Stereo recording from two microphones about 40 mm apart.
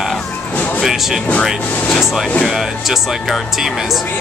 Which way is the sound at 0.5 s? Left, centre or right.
Left.